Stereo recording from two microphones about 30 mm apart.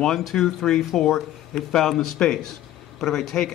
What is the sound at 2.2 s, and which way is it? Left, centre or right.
Speech, left.